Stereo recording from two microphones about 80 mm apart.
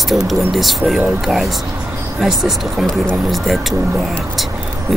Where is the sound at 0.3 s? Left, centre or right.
Centre.